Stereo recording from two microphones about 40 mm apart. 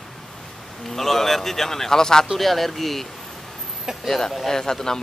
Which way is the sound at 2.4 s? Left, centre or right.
Centre.